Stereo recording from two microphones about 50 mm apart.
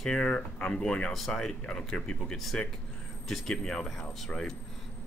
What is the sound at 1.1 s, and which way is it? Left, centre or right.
Speech, centre.